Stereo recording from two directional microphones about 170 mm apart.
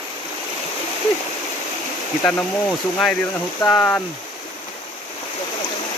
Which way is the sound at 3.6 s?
10° left (ahead or behind).